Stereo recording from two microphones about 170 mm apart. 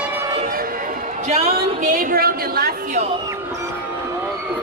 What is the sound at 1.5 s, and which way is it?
A woman's voice, 55° right (ahead or behind).